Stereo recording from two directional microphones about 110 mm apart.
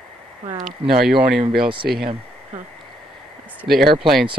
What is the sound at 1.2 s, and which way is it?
Speech, 50° right (ahead or behind).